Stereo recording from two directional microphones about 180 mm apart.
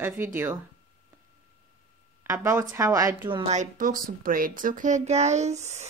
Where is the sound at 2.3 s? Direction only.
15° right (ahead or behind).